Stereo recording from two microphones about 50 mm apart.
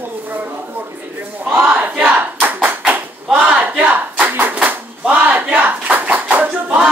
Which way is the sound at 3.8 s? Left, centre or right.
Right.